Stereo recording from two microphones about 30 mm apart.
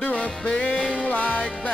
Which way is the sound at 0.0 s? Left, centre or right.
Left.